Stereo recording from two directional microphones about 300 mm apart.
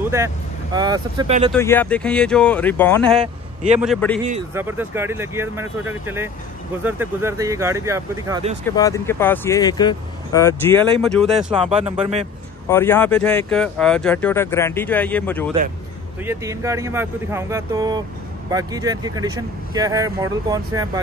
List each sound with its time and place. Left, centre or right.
0.0 s vehicle: centre
0.7 s speech: centre
1.5 s speech: centre
8.6 s speech: centre
11.5 s speech: centre
12.6 s speech: centre
16.3 s speech: centre